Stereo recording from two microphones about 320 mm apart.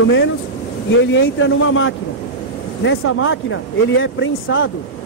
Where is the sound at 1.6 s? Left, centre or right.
Left.